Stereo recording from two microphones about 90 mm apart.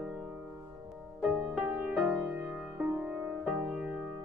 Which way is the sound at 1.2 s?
15° right (ahead or behind).